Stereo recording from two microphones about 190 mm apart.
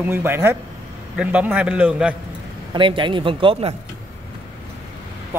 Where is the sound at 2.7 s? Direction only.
25° right (ahead or behind).